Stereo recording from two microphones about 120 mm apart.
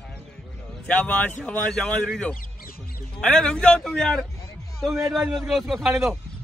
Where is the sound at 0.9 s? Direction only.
10° left (ahead or behind).